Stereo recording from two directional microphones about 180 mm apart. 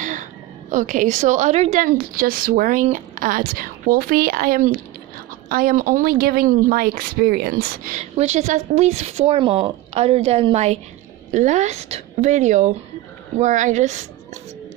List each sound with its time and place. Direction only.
0.0 s a woman's voice: 45° right (ahead or behind)
1.9 s a woman's voice: 55° right (ahead or behind)
8.0 s speech: 35° right (ahead or behind)